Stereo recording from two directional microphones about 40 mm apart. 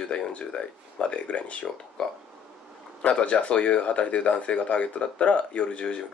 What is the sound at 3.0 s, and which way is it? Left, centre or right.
Speech, left.